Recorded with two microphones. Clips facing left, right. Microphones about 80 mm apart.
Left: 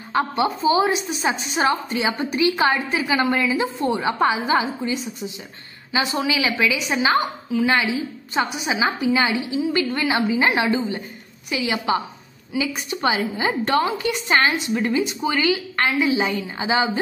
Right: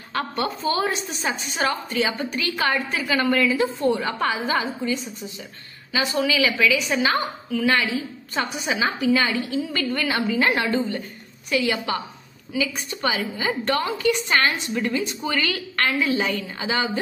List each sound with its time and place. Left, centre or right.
0.1 s a woman's voice: centre